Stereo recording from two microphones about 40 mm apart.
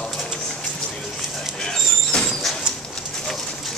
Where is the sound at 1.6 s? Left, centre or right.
Centre.